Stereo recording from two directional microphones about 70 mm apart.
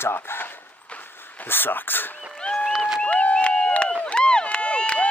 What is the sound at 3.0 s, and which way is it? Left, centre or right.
Crowd, centre.